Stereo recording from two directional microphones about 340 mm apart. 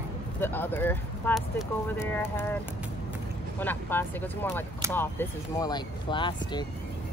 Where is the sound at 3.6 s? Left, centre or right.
Centre.